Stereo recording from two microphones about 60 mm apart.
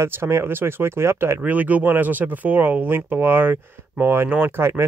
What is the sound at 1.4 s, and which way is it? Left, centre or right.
Speech, right.